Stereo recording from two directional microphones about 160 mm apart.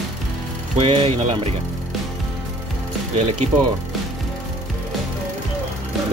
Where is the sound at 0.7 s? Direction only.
35° right (ahead or behind).